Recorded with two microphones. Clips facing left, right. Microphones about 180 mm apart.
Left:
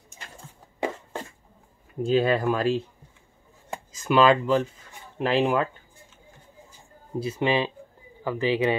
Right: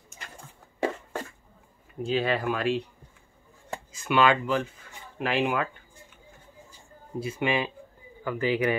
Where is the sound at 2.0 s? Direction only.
40° left (ahead or behind).